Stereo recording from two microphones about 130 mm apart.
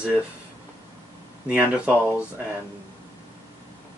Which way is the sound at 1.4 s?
10° right (ahead or behind).